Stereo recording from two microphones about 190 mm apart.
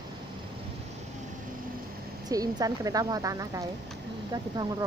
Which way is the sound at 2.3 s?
20° right (ahead or behind).